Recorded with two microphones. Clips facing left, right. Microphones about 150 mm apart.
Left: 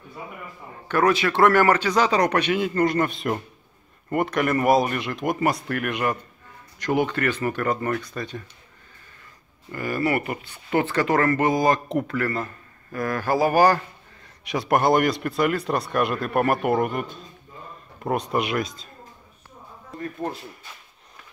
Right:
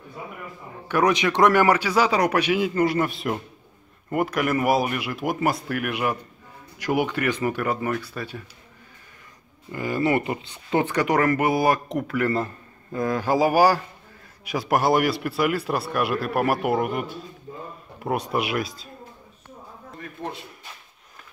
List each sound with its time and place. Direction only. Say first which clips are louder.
0.8 s a man's voice: even; 15° right (ahead or behind)
9.7 s a man's voice: right 1 dB; 15° right (ahead or behind)
11.9 s speech: left 2 dB; centre (ahead or behind)
12.2 s a man's voice: right 3 dB; 25° right (ahead or behind); by 18.9 s centre (ahead or behind)